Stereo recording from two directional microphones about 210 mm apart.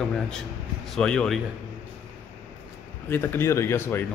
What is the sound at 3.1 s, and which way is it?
Speech, 10° left (ahead or behind).